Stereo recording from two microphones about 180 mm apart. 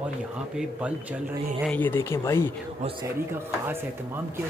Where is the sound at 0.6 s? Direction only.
5° right (ahead or behind).